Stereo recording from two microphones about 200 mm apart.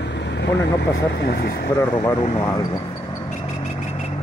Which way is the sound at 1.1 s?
50° left (ahead or behind).